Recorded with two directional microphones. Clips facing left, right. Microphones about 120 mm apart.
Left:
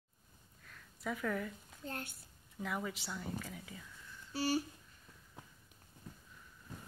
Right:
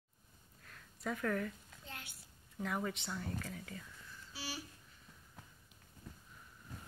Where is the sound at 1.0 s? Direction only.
5° left (ahead or behind).